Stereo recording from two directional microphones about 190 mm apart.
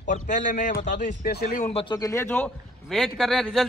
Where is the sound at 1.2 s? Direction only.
55° left (ahead or behind).